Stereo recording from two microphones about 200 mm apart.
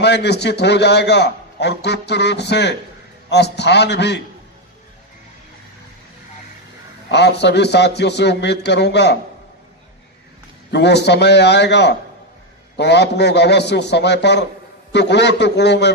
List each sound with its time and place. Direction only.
0.0 s a man's voice: 60° left (ahead or behind)
7.1 s a man's voice: 60° left (ahead or behind)
10.7 s a man's voice: 60° left (ahead or behind)